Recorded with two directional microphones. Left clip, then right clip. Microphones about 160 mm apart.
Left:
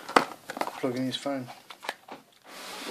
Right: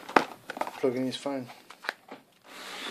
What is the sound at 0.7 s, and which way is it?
Speech, 25° right (ahead or behind).